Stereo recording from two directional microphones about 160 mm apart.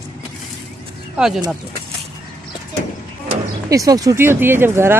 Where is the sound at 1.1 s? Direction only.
5° right (ahead or behind).